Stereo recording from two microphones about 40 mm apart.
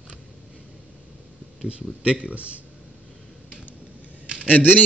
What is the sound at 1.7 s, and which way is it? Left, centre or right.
Speech, right.